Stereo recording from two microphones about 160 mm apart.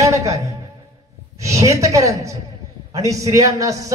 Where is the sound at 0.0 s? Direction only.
20° right (ahead or behind).